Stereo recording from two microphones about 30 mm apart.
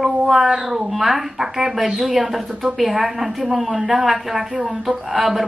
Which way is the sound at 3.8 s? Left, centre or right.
Right.